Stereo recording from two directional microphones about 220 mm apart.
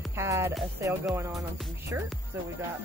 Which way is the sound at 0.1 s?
10° right (ahead or behind).